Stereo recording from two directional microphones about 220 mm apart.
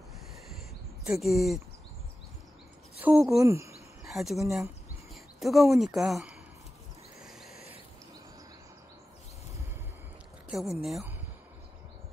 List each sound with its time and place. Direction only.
1.0 s a woman's voice: centre (ahead or behind)
3.0 s speech: 10° right (ahead or behind)
4.1 s a woman's voice: centre (ahead or behind)
7.2 s a sound: centre (ahead or behind)
10.5 s a woman's voice: centre (ahead or behind)